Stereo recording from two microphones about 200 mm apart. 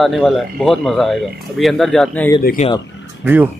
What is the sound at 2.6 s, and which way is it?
Speech, 35° left (ahead or behind).